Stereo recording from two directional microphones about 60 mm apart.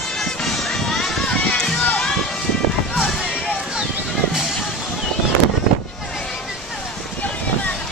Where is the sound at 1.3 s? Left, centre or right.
Centre.